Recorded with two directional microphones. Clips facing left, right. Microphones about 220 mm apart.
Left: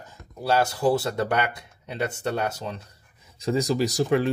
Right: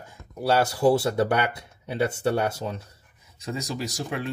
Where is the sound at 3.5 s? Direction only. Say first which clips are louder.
Left 8 dB; 35° left (ahead or behind).